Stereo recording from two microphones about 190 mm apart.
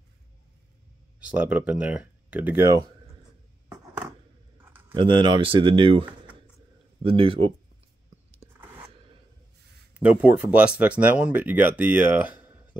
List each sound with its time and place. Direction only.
1.3 s speech: 5° right (ahead or behind)
4.9 s speech: 25° right (ahead or behind)
9.9 s speech: 5° right (ahead or behind)